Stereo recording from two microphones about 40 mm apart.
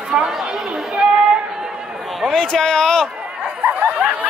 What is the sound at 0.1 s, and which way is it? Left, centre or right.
Speech, right.